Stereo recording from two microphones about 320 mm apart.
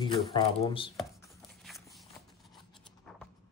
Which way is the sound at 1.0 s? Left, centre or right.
Centre.